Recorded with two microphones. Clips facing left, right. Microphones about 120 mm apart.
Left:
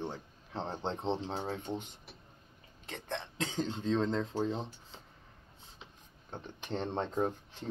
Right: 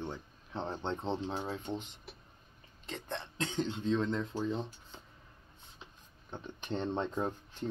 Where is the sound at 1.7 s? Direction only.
10° left (ahead or behind).